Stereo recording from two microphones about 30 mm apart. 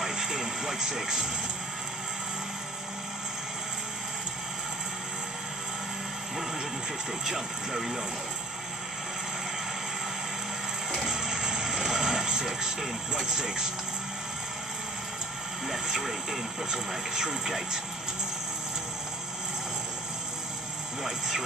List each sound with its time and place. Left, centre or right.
0.1 s vehicle: right
7.2 s speech: centre
10.9 s vehicle: centre
13.1 s speech: right
16.0 s speech: centre
16.7 s speech: centre